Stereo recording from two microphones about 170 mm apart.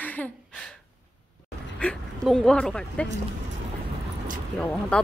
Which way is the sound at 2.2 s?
5° left (ahead or behind).